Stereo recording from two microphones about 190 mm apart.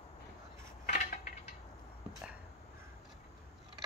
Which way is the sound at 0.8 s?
40° left (ahead or behind).